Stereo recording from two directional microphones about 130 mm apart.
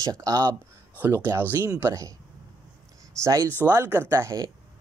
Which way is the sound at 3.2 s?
25° right (ahead or behind).